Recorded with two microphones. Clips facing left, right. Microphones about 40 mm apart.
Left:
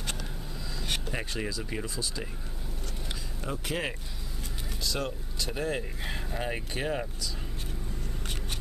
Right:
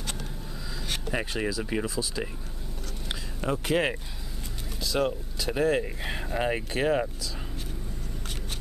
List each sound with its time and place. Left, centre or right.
1.1 s speech: centre
3.1 s a sound: right
4.8 s speech: centre